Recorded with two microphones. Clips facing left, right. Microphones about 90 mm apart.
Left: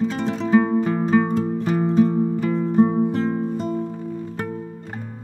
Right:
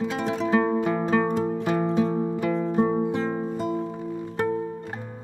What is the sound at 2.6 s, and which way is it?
Music, centre (ahead or behind).